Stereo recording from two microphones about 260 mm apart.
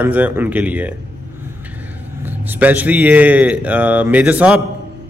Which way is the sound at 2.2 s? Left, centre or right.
Centre.